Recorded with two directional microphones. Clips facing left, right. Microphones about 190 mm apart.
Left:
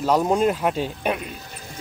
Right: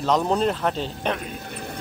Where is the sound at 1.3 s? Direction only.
60° right (ahead or behind).